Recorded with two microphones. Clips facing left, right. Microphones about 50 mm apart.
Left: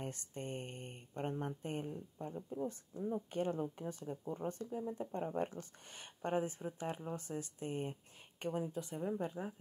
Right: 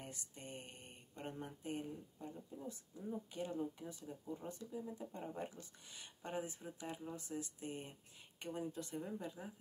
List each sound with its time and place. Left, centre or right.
0.0 s speech: left
9.2 s speech: left